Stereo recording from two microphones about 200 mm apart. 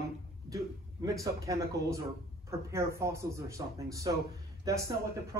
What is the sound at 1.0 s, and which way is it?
A man's voice, 15° right (ahead or behind).